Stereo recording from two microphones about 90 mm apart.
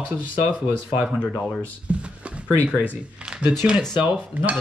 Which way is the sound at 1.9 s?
15° right (ahead or behind).